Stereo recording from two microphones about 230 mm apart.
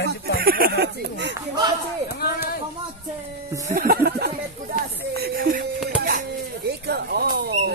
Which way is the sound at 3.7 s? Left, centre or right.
Right.